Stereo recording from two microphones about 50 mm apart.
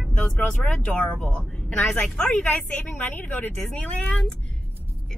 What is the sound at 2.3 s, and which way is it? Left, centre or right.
A woman's voice, left.